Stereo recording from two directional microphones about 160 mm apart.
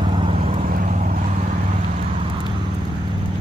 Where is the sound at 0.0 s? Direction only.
30° right (ahead or behind).